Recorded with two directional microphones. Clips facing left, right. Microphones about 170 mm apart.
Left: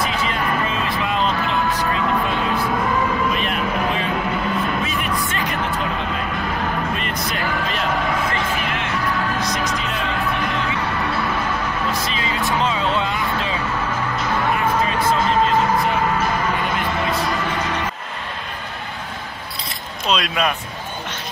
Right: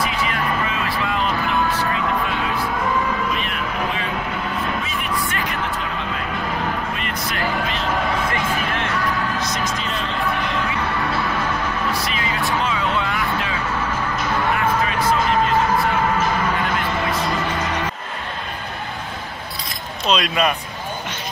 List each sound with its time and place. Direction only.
0.8 s music: 20° left (ahead or behind)
12.1 s music: 25° left (ahead or behind)
20.1 s speech: centre (ahead or behind)